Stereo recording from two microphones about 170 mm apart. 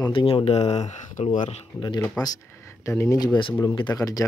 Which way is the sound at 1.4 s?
30° left (ahead or behind).